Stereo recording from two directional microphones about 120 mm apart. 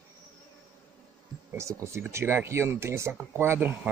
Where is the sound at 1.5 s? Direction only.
25° right (ahead or behind).